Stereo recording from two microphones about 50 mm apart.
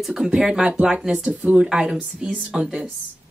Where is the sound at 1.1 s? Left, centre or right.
Right.